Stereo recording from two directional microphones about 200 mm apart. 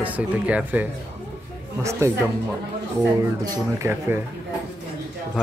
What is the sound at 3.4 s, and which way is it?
Speech, 15° right (ahead or behind).